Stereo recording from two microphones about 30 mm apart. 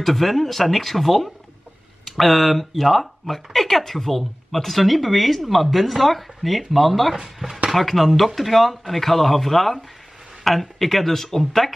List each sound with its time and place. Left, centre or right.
0.0 s speech: centre
7.4 s speech: right
7.7 s speech: centre